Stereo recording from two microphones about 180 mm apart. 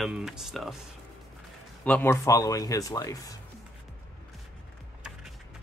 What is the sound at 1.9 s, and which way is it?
Speech, 10° left (ahead or behind).